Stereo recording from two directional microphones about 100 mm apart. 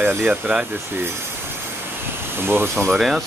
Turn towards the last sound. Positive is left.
turn(degrees=0)  # may be behind; listen again after turning